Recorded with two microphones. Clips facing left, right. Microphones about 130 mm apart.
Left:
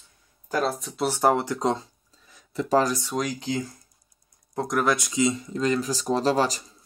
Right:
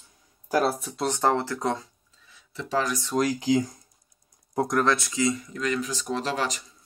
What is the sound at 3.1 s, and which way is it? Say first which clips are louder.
Speech: right 5 dB; 5° right (ahead or behind).